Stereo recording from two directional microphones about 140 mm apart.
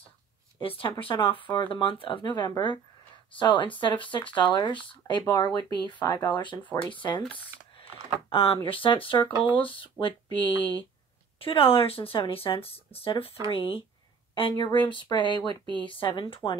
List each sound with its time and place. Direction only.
0.6 s speech: 40° left (ahead or behind)
8.3 s speech: 40° left (ahead or behind)
16.4 s speech: 5° left (ahead or behind)